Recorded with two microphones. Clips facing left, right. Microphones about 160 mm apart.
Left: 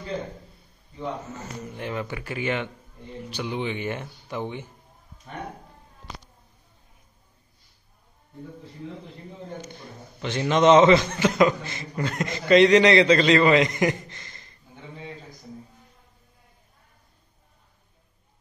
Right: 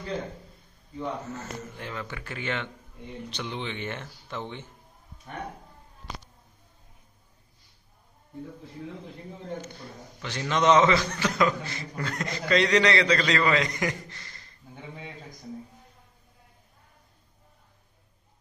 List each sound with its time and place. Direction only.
0.9 s speech: 15° left (ahead or behind)
9.6 s a man's voice: 20° left (ahead or behind)